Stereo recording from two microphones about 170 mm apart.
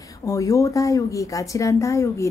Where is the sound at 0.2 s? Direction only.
20° left (ahead or behind).